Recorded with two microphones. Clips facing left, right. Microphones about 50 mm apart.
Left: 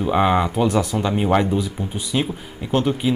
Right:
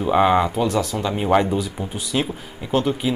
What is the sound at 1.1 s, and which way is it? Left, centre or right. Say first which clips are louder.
Speech: right 1 dB; centre.